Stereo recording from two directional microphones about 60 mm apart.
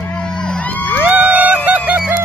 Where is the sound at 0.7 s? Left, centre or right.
Left.